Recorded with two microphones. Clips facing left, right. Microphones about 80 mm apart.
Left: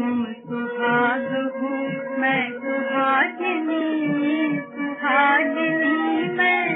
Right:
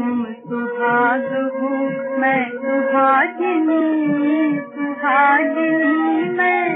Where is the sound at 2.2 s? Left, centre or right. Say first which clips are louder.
Right 5 dB; right.